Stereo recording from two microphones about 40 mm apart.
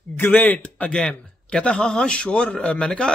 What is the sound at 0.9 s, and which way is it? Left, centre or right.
A man's voice, left.